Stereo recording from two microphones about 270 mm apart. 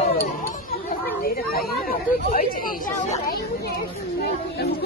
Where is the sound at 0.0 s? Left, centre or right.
Left.